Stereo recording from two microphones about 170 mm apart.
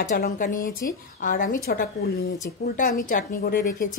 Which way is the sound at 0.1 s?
55° left (ahead or behind).